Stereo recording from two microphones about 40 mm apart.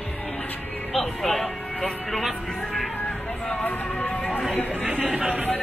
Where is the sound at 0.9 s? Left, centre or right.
Centre.